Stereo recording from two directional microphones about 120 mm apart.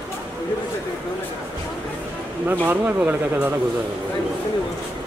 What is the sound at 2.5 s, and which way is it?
Speech, 15° right (ahead or behind).